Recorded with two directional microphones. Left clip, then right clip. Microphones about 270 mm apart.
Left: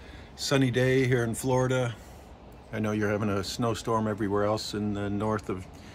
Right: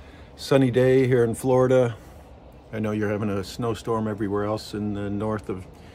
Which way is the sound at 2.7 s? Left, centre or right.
Centre.